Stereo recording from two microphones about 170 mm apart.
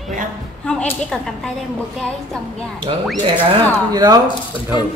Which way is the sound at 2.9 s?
35° right (ahead or behind).